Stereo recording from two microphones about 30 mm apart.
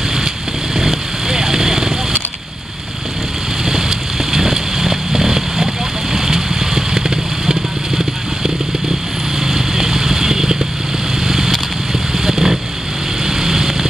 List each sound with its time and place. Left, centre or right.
0.7 s vehicle: centre
4.3 s vehicle: centre
9.4 s vehicle: centre